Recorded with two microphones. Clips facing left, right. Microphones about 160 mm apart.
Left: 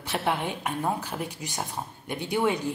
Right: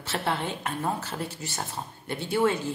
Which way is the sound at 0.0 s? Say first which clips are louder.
Left 1 dB; 15° left (ahead or behind).